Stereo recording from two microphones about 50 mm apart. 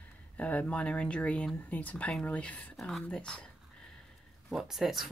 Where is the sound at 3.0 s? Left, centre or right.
Centre.